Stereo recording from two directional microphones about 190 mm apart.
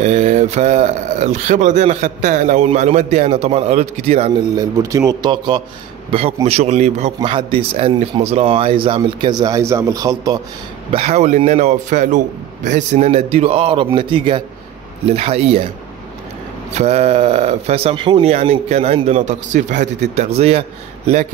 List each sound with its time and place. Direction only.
0.0 s speech: 35° right (ahead or behind)
4.6 s speech: 15° right (ahead or behind)
6.4 s speech: 35° right (ahead or behind)
10.9 s speech: 35° right (ahead or behind)
16.7 s speech: 35° right (ahead or behind)